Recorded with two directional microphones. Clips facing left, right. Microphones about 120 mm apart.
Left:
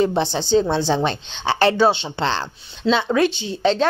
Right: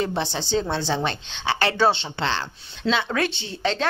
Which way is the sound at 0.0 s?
20° left (ahead or behind).